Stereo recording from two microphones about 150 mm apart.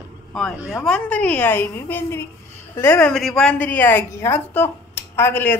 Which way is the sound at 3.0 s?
5° left (ahead or behind).